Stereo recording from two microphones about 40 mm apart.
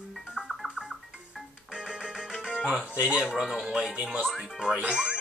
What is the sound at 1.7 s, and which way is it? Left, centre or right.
Music, right.